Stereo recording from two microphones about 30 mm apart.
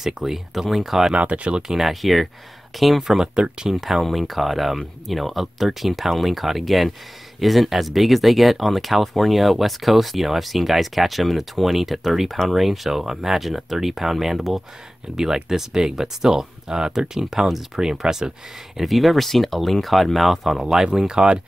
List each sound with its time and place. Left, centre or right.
0.0 s speech: centre
1.1 s speech: right
1.9 s speech: centre
3.3 s speech: right
3.7 s speech: centre
12.3 s speech: centre
12.5 s speech: centre
15.1 s speech: centre
18.8 s speech: centre
20.5 s speech: centre